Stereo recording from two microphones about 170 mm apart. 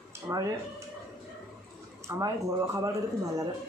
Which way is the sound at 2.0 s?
20° right (ahead or behind).